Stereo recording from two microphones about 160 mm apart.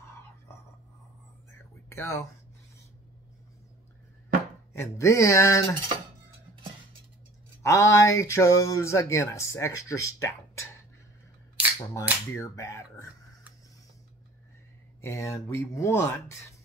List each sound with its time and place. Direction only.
1.9 s speech: 15° left (ahead or behind)
4.7 s speech: 20° left (ahead or behind)
7.6 s speech: 20° left (ahead or behind)
11.6 s cap gun: 10° right (ahead or behind)
12.4 s speech: 20° left (ahead or behind)
15.0 s speech: 20° left (ahead or behind)